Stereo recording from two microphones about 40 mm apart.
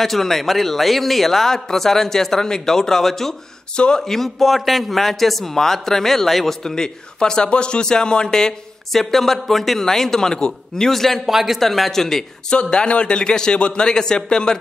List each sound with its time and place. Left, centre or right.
0.0 s a man's voice: centre
3.7 s a man's voice: left
4.0 s a man's voice: centre
11.2 s speech: centre
11.6 s a man's voice: centre
12.7 s a man's voice: left